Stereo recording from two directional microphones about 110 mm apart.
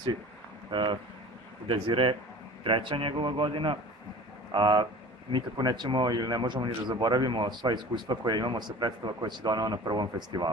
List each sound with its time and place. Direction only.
0.7 s a man's voice: 50° right (ahead or behind)